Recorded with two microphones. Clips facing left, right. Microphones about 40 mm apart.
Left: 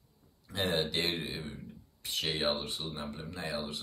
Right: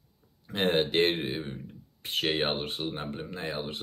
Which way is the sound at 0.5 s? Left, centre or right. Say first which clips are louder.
Right 6 dB; right.